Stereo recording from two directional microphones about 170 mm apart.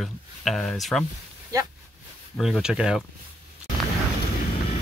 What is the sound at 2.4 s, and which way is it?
Speech, 5° right (ahead or behind).